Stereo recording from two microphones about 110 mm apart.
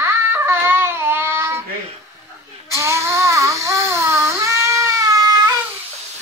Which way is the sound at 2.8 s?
25° right (ahead or behind).